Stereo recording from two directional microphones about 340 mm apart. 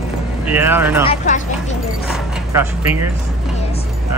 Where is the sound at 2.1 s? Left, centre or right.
Centre.